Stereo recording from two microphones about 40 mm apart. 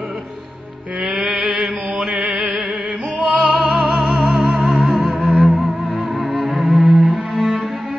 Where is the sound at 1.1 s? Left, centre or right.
Right.